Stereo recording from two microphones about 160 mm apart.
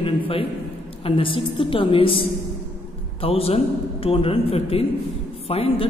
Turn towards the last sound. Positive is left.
turn(degrees=35)  # may be behind; listen again after turning